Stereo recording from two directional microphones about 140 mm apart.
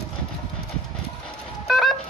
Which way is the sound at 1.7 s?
Centre (ahead or behind).